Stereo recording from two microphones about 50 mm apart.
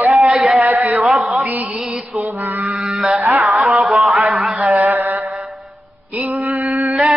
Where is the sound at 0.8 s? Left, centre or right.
Centre.